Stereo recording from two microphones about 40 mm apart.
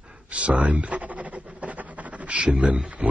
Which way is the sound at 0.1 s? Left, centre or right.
Right.